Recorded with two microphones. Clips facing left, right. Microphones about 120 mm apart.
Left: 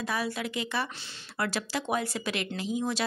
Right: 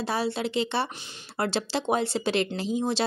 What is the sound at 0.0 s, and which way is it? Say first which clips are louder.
Speech: right 4 dB; 30° right (ahead or behind).